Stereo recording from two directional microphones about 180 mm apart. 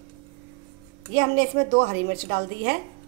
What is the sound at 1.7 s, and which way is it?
A woman's voice, 60° right (ahead or behind).